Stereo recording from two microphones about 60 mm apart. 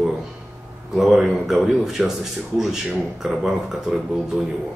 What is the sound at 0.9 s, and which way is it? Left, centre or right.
Speech, centre.